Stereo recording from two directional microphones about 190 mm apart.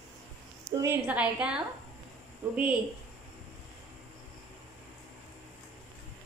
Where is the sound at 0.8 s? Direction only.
10° right (ahead or behind).